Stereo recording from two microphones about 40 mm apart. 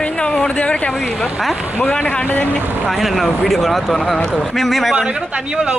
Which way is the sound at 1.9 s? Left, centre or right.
Left.